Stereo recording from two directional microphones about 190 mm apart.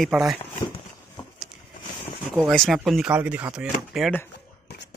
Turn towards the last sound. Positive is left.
turn(degrees=-5)  # may be behind; listen again after turning